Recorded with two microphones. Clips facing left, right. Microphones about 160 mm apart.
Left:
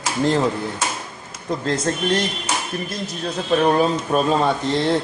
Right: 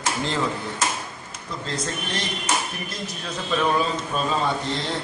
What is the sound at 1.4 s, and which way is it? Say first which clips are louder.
Speech: left 8 dB; 55° left (ahead or behind).